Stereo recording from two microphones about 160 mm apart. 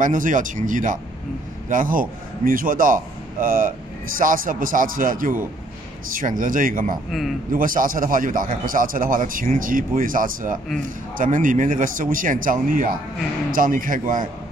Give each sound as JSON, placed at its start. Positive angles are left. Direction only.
{"t": 0.0, "sound": "a man's voice", "side_deg": -55}
{"t": 7.1, "sound": "speech", "side_deg": 0}
{"t": 7.5, "sound": "a man's voice", "side_deg": -60}